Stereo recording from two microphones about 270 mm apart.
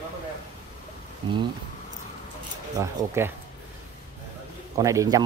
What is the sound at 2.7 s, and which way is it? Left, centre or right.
Speech, centre.